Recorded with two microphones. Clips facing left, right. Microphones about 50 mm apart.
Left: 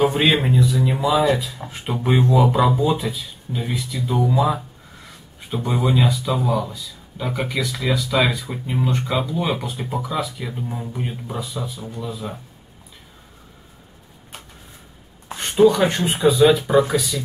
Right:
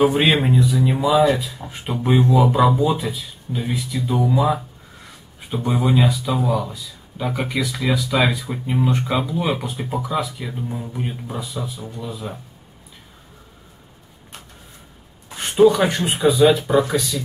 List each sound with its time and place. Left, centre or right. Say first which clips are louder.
0.0 s speech: right 1 dB; centre
15.3 s speech: right 1 dB; centre